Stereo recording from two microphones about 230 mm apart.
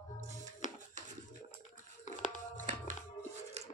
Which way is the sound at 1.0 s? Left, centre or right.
Right.